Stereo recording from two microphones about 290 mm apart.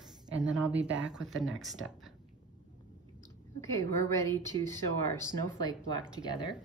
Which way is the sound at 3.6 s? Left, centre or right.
Centre.